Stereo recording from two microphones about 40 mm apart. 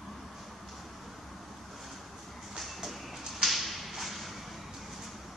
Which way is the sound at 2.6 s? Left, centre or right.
Centre.